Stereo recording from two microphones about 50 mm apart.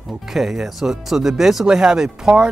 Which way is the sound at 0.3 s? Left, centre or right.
Centre.